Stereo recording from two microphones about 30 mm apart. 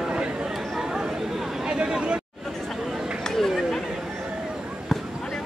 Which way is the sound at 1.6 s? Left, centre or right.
Right.